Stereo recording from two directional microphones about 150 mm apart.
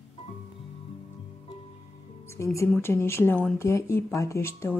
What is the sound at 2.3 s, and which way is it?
Speech, 20° left (ahead or behind).